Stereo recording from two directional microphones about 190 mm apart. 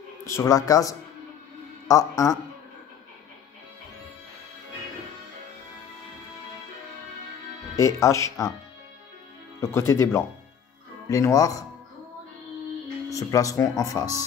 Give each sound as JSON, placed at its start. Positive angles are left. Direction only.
{"t": 0.2, "sound": "speech", "side_deg": 15}
{"t": 7.7, "sound": "speech", "side_deg": 15}
{"t": 9.6, "sound": "speech", "side_deg": 15}
{"t": 13.1, "sound": "speech", "side_deg": 15}